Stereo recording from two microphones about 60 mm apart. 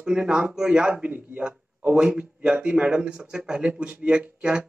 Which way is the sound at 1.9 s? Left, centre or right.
Centre.